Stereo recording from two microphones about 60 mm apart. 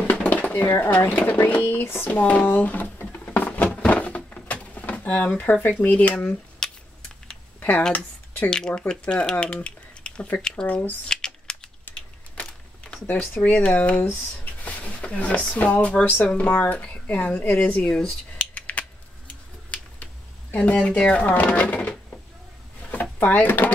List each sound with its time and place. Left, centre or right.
0.1 s a sound: left
0.6 s speech: left
0.8 s speech: left
2.0 s a sound: left
3.8 s drawer open or close: left
5.4 s speech: left
6.6 s a sound: centre
7.9 s a sound: left
8.5 s speech: centre
10.7 s speech: left
11.1 s computer keyboard: centre
13.0 s speech: left
20.5 s speech: centre
23.2 s speech: left